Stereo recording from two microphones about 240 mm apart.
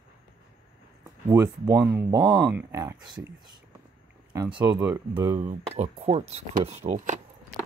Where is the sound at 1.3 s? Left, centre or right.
Centre.